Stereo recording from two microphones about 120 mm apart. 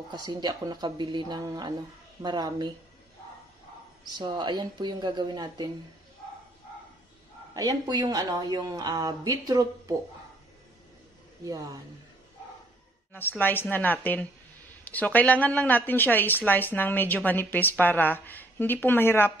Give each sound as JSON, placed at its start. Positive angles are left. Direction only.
{"t": 0.1, "sound": "a woman's voice", "side_deg": -35}
{"t": 4.0, "sound": "a woman's voice", "side_deg": -40}
{"t": 7.5, "sound": "a woman's voice", "side_deg": -35}
{"t": 11.4, "sound": "speech", "side_deg": -30}
{"t": 13.4, "sound": "a woman's voice", "side_deg": 15}